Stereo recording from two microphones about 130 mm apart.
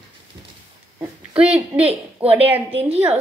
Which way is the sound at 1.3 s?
10° right (ahead or behind).